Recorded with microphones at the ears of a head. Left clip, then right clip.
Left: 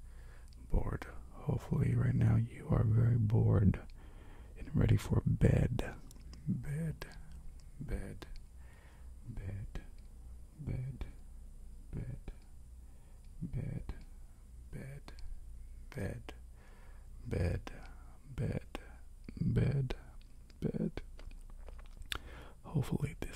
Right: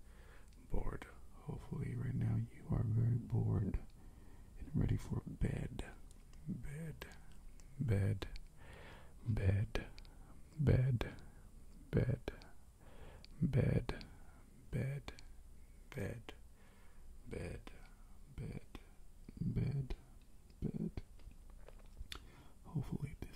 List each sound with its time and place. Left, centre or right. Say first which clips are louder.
0.7 s speech: left 5 dB; left
8.6 s whispering: right 8 dB; right
10.5 s speech: right 11 dB; right
13.0 s a sound: right 7 dB; right
14.7 s speech: right 6 dB; right
17.2 s whispering: left 8 dB; left
20.6 s a sound: left 7 dB; left
22.1 s whispering: left 10 dB; left